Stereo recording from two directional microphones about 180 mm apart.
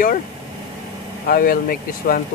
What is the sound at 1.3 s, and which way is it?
Speech, 50° left (ahead or behind).